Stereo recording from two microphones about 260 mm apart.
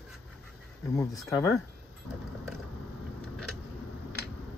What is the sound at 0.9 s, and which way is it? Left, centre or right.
Speech, centre.